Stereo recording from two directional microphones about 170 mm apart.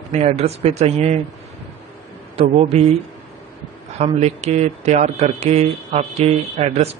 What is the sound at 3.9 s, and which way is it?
Speech, 40° right (ahead or behind).